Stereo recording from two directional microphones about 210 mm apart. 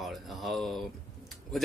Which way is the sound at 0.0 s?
Centre (ahead or behind).